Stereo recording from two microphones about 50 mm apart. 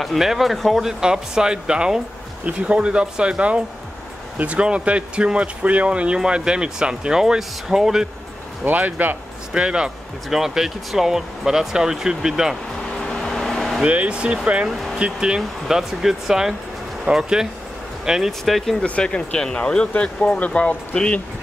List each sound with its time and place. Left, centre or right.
0.0 s speech: centre
1.0 s speech: centre
8.6 s speech: right
9.5 s speech: centre
10.3 s speech: centre
13.0 s vehicle: centre
13.8 s speech: right
18.4 s speech: centre
18.9 s speech: left